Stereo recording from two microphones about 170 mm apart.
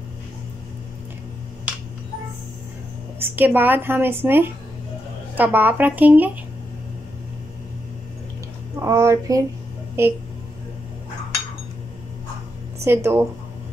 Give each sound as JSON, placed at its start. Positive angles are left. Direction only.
{"t": 3.2, "sound": "a woman's voice", "side_deg": -10}
{"t": 8.8, "sound": "a woman's voice", "side_deg": -20}
{"t": 12.8, "sound": "a woman's voice", "side_deg": -15}